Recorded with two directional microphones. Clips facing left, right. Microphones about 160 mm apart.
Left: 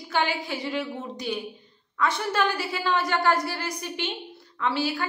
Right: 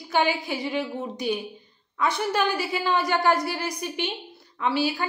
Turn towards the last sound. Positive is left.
turn(degrees=-15)  # may be behind; listen again after turning